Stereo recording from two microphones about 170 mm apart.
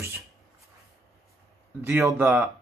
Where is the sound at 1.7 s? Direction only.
10° right (ahead or behind).